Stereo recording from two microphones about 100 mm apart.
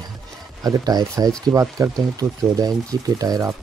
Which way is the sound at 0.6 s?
40° right (ahead or behind).